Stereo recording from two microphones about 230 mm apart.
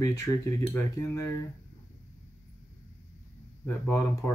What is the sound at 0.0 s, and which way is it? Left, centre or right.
Speech, centre.